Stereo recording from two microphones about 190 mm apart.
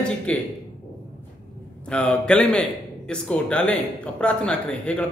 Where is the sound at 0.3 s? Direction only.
5° left (ahead or behind).